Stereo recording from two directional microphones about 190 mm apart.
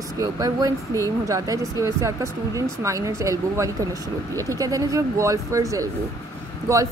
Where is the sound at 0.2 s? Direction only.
20° right (ahead or behind).